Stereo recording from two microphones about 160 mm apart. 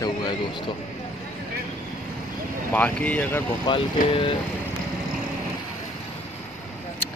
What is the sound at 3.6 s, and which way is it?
Speech, 30° left (ahead or behind).